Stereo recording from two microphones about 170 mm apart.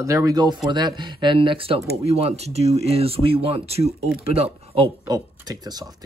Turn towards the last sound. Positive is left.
turn(degrees=-20)  # may be behind; listen again after turning